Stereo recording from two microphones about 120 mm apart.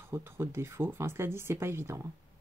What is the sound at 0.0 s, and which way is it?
Speech, 20° right (ahead or behind).